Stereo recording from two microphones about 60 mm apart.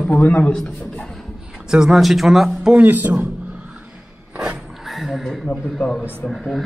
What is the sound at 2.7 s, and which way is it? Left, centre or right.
Speech, right.